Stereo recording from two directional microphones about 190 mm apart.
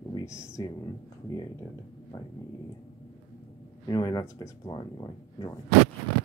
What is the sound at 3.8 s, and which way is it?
Speech, 20° left (ahead or behind).